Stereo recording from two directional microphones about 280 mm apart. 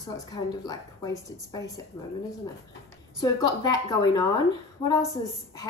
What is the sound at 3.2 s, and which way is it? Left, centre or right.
A woman's voice, centre.